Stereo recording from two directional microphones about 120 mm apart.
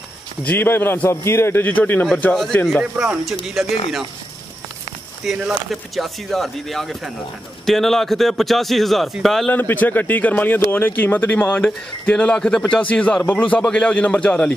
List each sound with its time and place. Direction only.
0.4 s speech: 15° left (ahead or behind)
2.6 s a man's voice: centre (ahead or behind)
5.2 s a man's voice: centre (ahead or behind)
9.5 s speech: 15° left (ahead or behind)